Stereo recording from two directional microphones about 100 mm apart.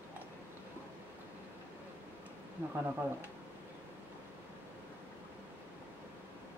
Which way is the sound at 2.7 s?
20° right (ahead or behind).